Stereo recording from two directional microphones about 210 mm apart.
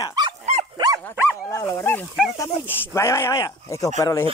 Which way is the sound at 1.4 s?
15° left (ahead or behind).